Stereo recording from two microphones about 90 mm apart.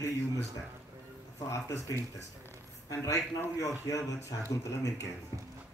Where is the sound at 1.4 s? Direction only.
35° left (ahead or behind).